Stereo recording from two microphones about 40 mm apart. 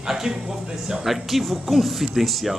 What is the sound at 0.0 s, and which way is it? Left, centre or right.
Speech, centre.